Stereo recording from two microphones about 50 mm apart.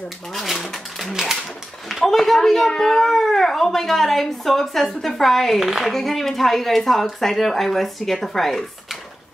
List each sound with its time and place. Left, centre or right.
0.3 s speech: centre